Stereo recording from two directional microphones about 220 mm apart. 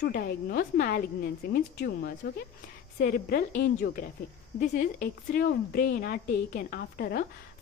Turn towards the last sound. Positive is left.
turn(degrees=45)  # may be behind; listen again after turning